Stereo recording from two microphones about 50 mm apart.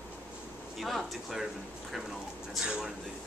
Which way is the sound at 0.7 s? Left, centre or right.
Centre.